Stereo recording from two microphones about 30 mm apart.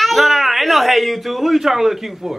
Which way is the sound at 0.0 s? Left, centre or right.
Centre.